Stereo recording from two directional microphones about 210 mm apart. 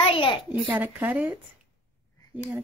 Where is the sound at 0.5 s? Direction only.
10° right (ahead or behind).